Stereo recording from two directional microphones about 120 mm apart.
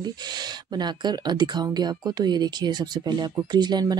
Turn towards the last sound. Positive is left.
turn(degrees=-35)  # may be behind; listen again after turning